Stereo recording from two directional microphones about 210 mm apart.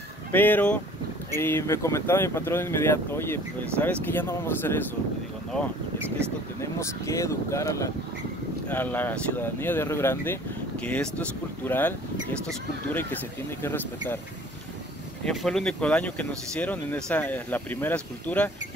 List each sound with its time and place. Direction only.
0.3 s speech: 10° left (ahead or behind)
6.6 s speech: 15° left (ahead or behind)
15.2 s speech: 5° left (ahead or behind)